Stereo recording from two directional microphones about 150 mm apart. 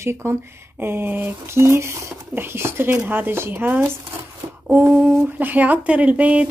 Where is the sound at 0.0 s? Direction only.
15° right (ahead or behind).